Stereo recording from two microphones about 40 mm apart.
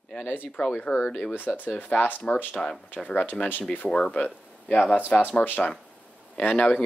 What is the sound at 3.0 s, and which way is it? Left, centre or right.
Speech, left.